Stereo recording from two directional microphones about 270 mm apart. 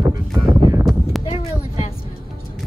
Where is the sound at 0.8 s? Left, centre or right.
Centre.